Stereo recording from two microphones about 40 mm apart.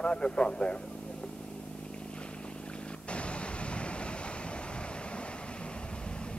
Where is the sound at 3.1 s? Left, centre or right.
Left.